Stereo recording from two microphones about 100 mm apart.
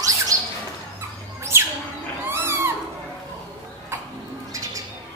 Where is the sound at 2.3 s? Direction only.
25° right (ahead or behind).